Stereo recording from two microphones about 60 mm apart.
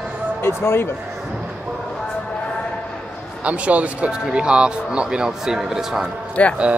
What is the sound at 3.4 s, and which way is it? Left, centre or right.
Speech, right.